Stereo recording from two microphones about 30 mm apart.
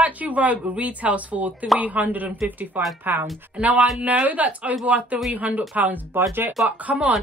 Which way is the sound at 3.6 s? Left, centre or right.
Right.